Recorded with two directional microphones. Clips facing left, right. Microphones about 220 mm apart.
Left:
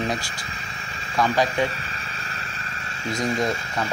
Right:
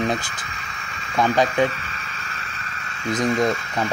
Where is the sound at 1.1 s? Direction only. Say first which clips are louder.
Right 3 dB; 20° right (ahead or behind).